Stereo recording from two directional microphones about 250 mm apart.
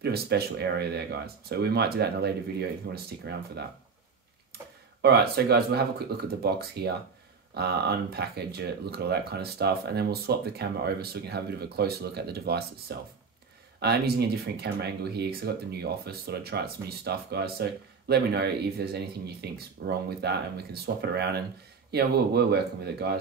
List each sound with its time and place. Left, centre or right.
0.0 s speech: right
5.0 s speech: right